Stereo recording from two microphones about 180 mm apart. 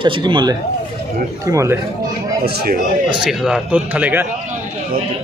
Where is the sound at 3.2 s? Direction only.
5° right (ahead or behind).